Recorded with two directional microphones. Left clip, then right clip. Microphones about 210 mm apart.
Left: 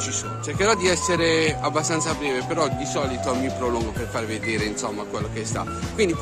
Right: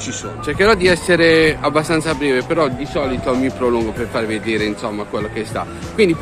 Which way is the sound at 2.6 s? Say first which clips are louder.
Right 5 dB; 20° left (ahead or behind).